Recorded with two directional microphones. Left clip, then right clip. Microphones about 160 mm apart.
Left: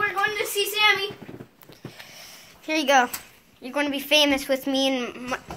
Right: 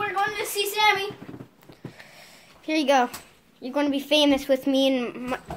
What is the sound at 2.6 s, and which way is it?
A woman's voice, 25° right (ahead or behind).